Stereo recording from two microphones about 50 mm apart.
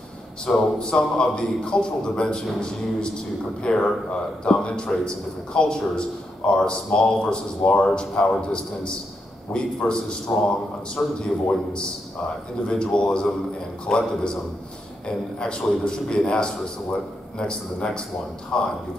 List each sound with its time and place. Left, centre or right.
0.5 s a man's voice: centre